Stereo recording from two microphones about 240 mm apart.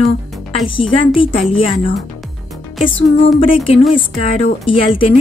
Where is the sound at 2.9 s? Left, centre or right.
Left.